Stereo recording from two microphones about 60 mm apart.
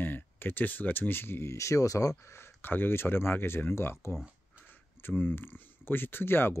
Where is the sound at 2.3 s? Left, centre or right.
Left.